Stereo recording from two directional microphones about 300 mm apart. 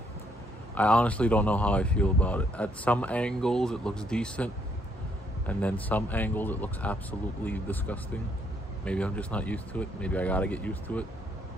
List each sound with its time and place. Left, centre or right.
0.7 s speech: centre
5.5 s speech: centre